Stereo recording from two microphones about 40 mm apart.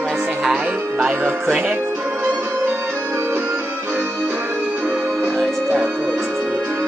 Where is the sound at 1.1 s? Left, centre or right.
Right.